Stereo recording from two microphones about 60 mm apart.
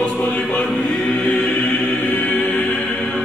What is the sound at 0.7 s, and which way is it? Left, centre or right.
Choir, centre.